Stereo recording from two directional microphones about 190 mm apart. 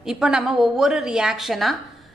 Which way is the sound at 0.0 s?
5° right (ahead or behind).